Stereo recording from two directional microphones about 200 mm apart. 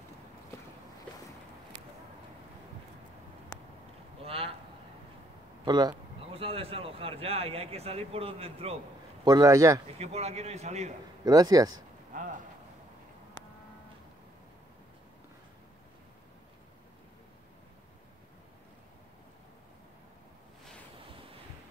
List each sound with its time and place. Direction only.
4.2 s a sound: 30° right (ahead or behind)
5.7 s speech: 20° right (ahead or behind)
9.2 s speech: 20° right (ahead or behind)
9.9 s speech: 30° right (ahead or behind)
11.2 s speech: 20° right (ahead or behind)
12.1 s a sound: 40° right (ahead or behind)